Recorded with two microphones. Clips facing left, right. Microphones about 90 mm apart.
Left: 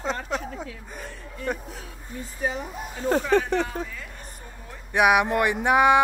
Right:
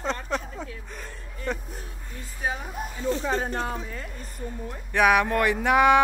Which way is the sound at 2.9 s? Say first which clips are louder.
Left 4 dB; 55° left (ahead or behind).